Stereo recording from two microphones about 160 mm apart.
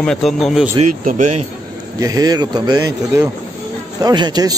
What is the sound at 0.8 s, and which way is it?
Speech, 50° right (ahead or behind).